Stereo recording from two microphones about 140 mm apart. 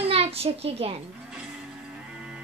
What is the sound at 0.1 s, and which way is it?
Speech, 45° right (ahead or behind).